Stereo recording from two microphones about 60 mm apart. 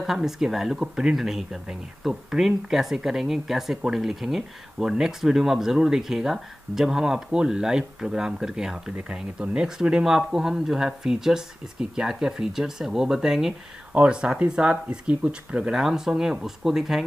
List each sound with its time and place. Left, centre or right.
0.0 s speech: centre
8.9 s speech: centre